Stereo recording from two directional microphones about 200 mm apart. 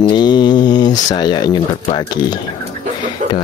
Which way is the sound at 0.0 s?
20° left (ahead or behind).